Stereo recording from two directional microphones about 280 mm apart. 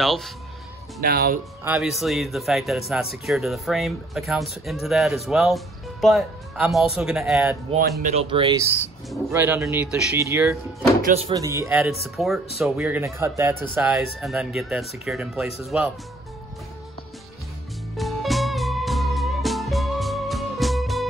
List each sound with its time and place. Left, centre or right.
0.0 s speech: centre
1.0 s speech: right
1.6 s speech: centre
8.0 s speech: right
9.1 s speech: centre
11.0 s speech: right; by 15.9 s centre
17.9 s music: centre